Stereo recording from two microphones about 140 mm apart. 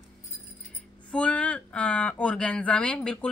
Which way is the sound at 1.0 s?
10° left (ahead or behind).